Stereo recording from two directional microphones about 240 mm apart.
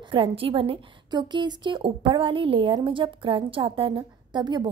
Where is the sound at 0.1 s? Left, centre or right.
Right.